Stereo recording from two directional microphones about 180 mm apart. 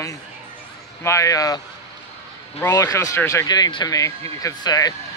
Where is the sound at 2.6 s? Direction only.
15° left (ahead or behind).